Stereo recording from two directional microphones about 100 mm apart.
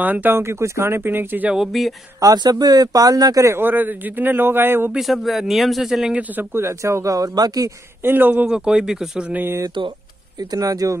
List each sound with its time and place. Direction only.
0.0 s speech: 15° right (ahead or behind)
1.5 s speech: 5° right (ahead or behind)
2.1 s speech: 40° right (ahead or behind)
3.5 s speech: 20° right (ahead or behind)
4.9 s speech: centre (ahead or behind)
6.3 s speech: 25° right (ahead or behind)
8.0 s speech: 20° right (ahead or behind)
8.5 s speech: 10° right (ahead or behind)
9.3 s speech: 20° right (ahead or behind)
10.5 s speech: 35° right (ahead or behind)